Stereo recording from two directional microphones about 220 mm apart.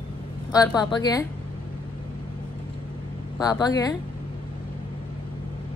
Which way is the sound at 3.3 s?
15° left (ahead or behind).